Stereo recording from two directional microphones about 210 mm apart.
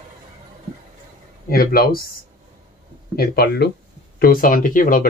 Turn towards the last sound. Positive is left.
turn(degrees=40)  # may be behind; listen again after turning